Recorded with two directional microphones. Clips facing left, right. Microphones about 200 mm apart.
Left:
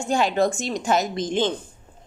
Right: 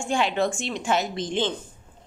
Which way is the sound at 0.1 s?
40° left (ahead or behind).